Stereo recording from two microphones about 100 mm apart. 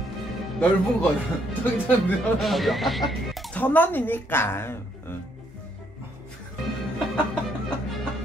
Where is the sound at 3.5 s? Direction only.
20° left (ahead or behind).